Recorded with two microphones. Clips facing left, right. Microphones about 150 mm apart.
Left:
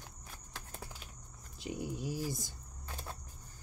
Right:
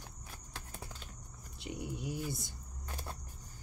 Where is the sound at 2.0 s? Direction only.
35° left (ahead or behind).